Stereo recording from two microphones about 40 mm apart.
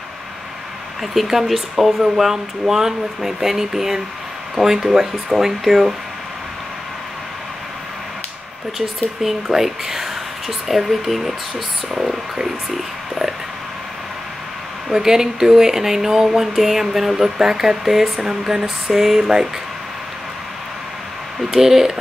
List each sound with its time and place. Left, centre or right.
1.1 s speech: centre
9.5 s speech: centre
14.9 s speech: centre
21.5 s speech: centre